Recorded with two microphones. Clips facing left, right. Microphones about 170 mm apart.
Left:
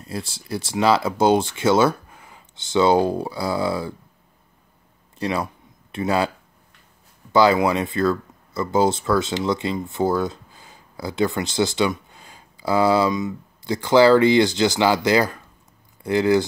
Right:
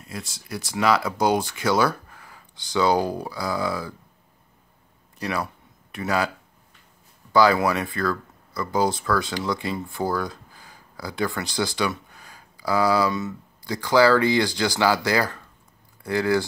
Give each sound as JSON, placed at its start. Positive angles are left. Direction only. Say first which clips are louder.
{"t": 0.0, "sound": "speech", "louder": "left 5 dB", "side_deg": 30}
{"t": 5.2, "sound": "speech", "louder": "left 3 dB", "side_deg": 25}
{"t": 7.3, "sound": "speech", "louder": "left 2 dB", "side_deg": 20}